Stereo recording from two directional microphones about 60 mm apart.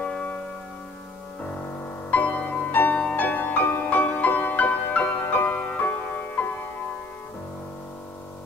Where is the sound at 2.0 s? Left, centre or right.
Left.